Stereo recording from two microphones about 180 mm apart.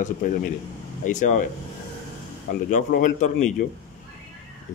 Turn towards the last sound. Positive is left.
turn(degrees=45)  # may be behind; listen again after turning